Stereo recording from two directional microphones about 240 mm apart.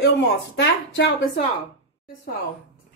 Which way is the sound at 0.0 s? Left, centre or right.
Left.